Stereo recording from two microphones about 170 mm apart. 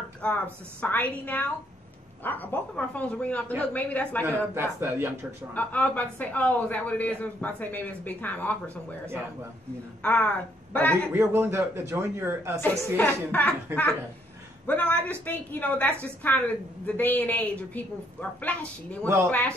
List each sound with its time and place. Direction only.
0.2 s a man's voice: 10° left (ahead or behind)
4.2 s speech: 15° right (ahead or behind)
5.5 s a man's voice: 10° left (ahead or behind)
8.6 s speech: 15° right (ahead or behind)
10.0 s a man's voice: 5° left (ahead or behind)
11.1 s speech: 15° right (ahead or behind)
12.9 s a man's voice: 10° left (ahead or behind)
14.7 s a man's voice: 10° left (ahead or behind)